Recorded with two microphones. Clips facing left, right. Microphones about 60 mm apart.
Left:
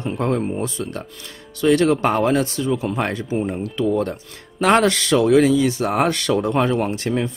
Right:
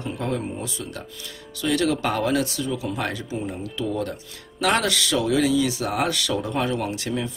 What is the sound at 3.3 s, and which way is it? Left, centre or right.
Speech, left.